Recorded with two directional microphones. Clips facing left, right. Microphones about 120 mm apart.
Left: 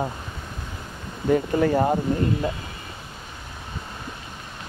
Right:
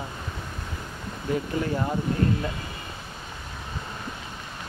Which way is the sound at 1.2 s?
55° left (ahead or behind).